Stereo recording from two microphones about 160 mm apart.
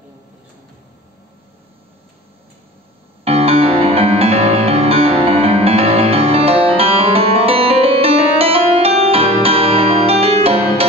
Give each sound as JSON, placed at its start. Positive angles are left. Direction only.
{"t": 3.3, "sound": "music", "side_deg": -40}